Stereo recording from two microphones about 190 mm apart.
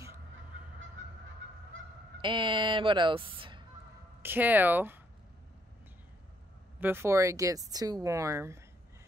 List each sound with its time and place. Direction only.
1.4 s goose: 90° right
2.2 s speech: 25° right (ahead or behind)
4.2 s speech: 10° right (ahead or behind)
6.8 s speech: 10° right (ahead or behind)